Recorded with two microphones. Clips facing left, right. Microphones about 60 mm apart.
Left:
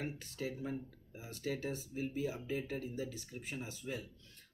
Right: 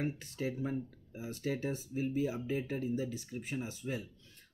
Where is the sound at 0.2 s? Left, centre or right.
Right.